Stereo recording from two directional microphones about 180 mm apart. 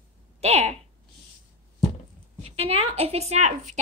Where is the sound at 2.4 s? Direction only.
35° right (ahead or behind).